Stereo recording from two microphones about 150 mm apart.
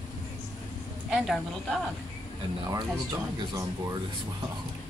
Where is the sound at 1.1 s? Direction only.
Centre (ahead or behind).